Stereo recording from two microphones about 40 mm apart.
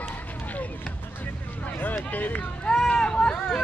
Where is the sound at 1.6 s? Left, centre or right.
Left.